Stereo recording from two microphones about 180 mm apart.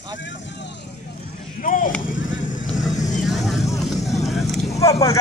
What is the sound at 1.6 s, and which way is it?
Speech, 45° left (ahead or behind).